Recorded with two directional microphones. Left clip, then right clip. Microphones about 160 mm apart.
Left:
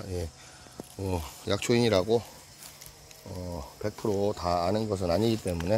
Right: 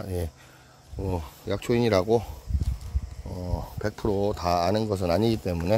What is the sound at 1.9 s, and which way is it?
Speech, 25° right (ahead or behind).